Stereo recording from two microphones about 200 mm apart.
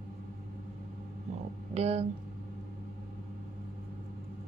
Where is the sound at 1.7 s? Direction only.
30° right (ahead or behind).